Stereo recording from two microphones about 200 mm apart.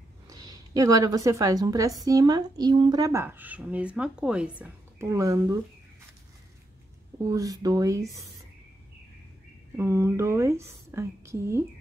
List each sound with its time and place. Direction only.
0.3 s a woman's voice: 15° right (ahead or behind)
7.2 s speech: 15° right (ahead or behind)
9.8 s speech: 15° right (ahead or behind)